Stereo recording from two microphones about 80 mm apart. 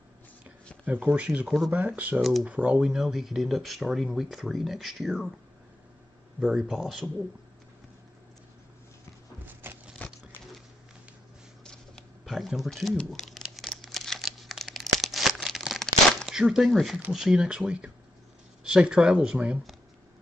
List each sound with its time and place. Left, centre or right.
1.0 s speech: centre
2.9 s speech: centre
6.4 s speech: centre
9.5 s a sound: right
10.0 s patter: centre
11.6 s a sound: centre
12.3 s speech: centre
13.6 s tearing: centre
16.3 s speech: centre